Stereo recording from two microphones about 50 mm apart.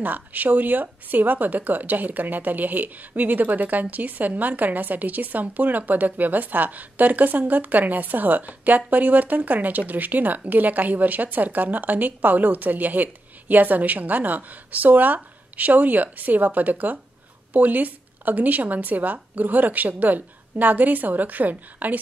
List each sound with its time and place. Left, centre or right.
0.0 s a woman's voice: right